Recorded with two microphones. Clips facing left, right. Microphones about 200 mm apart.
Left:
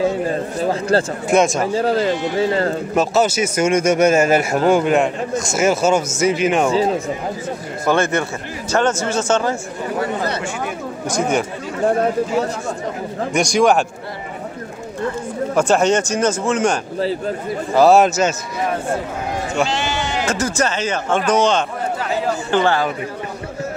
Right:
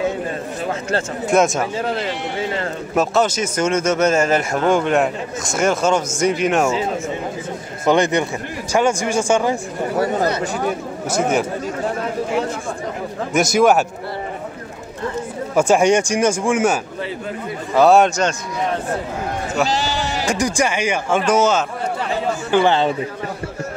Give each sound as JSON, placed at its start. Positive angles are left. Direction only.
{"t": 0.7, "sound": "speech", "side_deg": 35}
{"t": 1.3, "sound": "a man's voice", "side_deg": 0}
{"t": 1.7, "sound": "speech", "side_deg": 40}
{"t": 2.9, "sound": "a man's voice", "side_deg": 5}
{"t": 7.8, "sound": "speech", "side_deg": -15}
{"t": 11.1, "sound": "a man's voice", "side_deg": -5}
{"t": 13.3, "sound": "a man's voice", "side_deg": -5}
{"t": 15.5, "sound": "a man's voice", "side_deg": -10}
{"t": 19.7, "sound": "sheep", "side_deg": -35}
{"t": 20.2, "sound": "a man's voice", "side_deg": -15}